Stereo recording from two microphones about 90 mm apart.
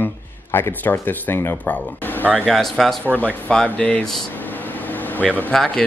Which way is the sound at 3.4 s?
10° left (ahead or behind).